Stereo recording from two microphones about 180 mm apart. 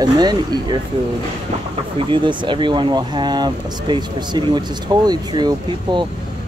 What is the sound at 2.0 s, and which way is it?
Speech, 25° right (ahead or behind).